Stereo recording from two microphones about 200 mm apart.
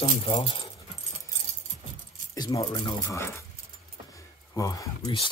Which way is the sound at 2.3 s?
20° left (ahead or behind).